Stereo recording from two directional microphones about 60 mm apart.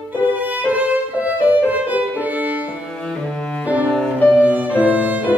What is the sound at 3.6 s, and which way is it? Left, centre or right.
Music, right.